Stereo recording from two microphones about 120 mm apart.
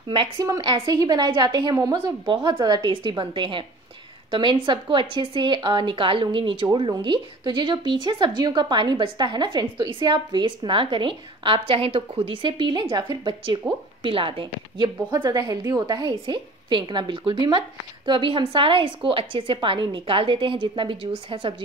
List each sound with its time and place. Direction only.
0.1 s a woman's voice: 35° right (ahead or behind)